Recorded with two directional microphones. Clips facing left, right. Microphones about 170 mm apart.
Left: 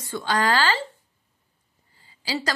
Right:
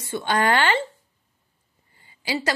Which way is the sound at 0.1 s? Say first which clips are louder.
Right 2 dB; 25° right (ahead or behind).